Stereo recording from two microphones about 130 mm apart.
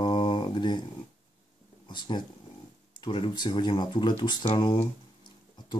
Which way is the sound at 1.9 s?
35° left (ahead or behind).